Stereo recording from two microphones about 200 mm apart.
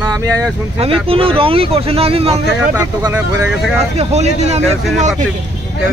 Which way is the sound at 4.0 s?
35° right (ahead or behind).